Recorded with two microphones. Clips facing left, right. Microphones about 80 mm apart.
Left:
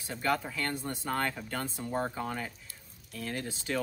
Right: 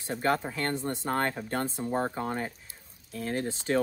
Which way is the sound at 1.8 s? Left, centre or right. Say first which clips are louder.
Right 3 dB; right.